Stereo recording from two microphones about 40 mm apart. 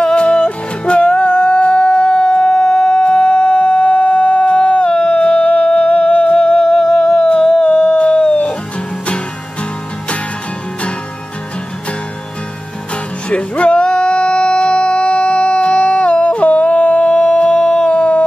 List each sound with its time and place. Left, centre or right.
0.0 s music: left
13.3 s music: left